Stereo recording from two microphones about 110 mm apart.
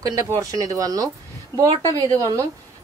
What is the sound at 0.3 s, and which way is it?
Speech, 30° right (ahead or behind).